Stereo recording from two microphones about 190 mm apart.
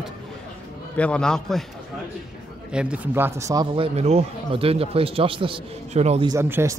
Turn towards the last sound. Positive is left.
turn(degrees=-15)  # may be behind; listen again after turning